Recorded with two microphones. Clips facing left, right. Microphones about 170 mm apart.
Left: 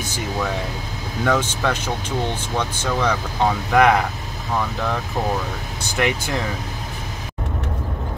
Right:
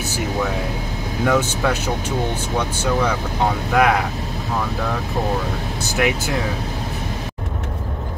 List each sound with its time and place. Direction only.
1.2 s speech: 10° right (ahead or behind)
5.9 s speech: 5° right (ahead or behind)